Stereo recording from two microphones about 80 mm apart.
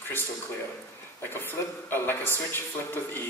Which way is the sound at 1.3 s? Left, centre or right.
Left.